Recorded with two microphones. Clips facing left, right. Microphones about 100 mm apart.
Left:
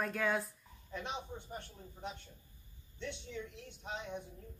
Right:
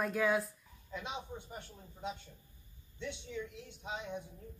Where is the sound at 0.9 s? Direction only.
15° right (ahead or behind).